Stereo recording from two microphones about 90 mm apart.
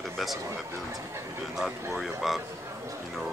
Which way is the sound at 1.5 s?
5° right (ahead or behind).